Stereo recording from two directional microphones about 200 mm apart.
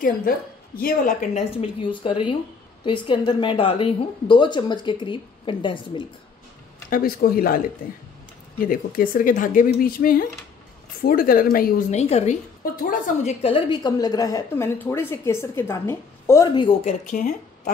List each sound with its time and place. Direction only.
0.0 s a woman's voice: 45° left (ahead or behind)
1.9 s a woman's voice: 25° left (ahead or behind)
6.9 s a woman's voice: 45° left (ahead or behind); by 16.4 s 15° left (ahead or behind)
16.8 s speech: 40° left (ahead or behind)